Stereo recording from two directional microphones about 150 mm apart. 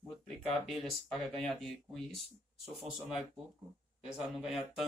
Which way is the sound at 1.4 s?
Centre (ahead or behind).